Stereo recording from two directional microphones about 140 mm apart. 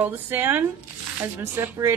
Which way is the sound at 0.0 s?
15° right (ahead or behind).